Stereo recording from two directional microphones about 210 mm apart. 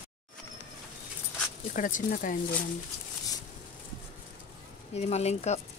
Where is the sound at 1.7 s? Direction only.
40° left (ahead or behind).